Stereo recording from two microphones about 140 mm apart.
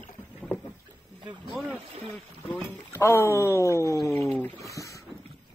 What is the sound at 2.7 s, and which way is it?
Speech, 15° left (ahead or behind).